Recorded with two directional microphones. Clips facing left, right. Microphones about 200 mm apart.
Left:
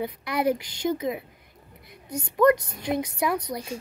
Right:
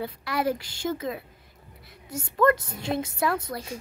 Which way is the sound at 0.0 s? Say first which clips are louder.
Left 2 dB; 20° left (ahead or behind).